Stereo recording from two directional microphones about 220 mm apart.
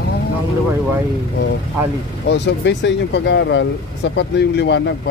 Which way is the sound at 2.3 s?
55° left (ahead or behind).